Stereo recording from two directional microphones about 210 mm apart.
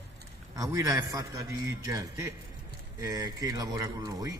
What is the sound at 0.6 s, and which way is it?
Speech, 15° right (ahead or behind).